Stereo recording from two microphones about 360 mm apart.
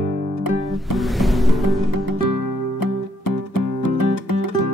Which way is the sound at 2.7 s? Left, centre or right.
Left.